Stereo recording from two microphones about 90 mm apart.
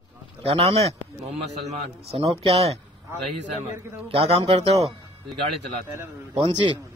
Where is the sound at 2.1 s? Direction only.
90° right.